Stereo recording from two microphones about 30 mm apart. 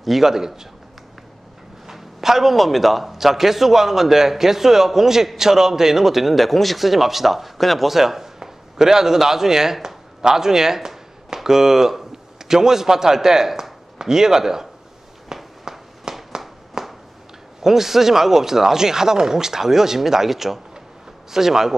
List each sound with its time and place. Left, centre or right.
0.2 s a man's voice: centre
1.9 s a man's voice: centre
6.3 s speech: centre
15.3 s a sound: centre
17.6 s a man's voice: centre